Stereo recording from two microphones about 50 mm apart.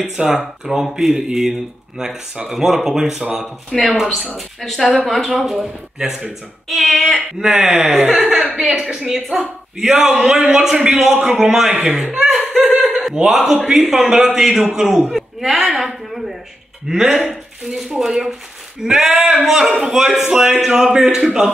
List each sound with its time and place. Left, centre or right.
0.2 s speech: centre
6.9 s a sound: centre
7.3 s speech: centre
8.3 s chuckle: centre
8.5 s speech: centre
13.1 s speech: centre
15.6 s a sound: centre
16.8 s speech: centre
19.4 s speech: centre